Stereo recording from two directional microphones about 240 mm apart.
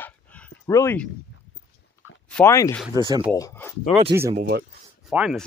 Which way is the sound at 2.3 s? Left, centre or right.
Centre.